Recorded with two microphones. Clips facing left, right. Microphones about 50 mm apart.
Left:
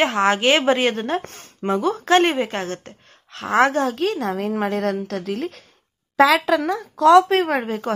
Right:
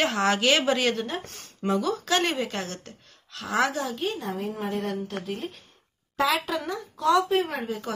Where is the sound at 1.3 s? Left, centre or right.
Left.